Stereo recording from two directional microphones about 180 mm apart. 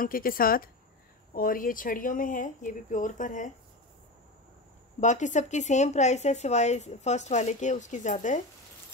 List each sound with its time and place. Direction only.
0.0 s speech: 50° left (ahead or behind)
5.0 s speech: 40° left (ahead or behind)